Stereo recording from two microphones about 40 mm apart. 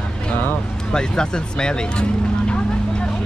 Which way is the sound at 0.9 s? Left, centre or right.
Centre.